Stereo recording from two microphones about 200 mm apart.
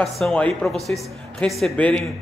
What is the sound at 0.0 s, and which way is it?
A woman's voice, 5° left (ahead or behind).